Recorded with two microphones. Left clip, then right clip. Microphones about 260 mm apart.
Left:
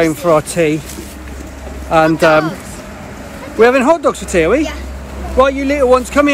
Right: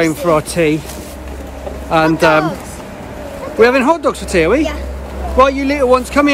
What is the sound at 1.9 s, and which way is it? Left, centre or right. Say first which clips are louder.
Speech: left 1 dB; centre.